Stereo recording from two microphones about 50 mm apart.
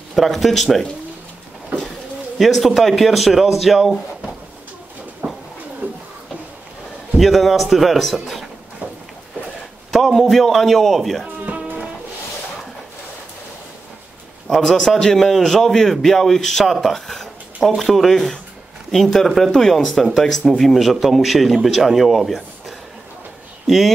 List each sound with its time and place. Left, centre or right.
0.1 s speech: centre
2.3 s speech: centre
5.2 s a sound: right
5.8 s a sound: right
7.2 s speech: centre
9.8 s speech: centre
11.4 s music: right
14.5 s speech: centre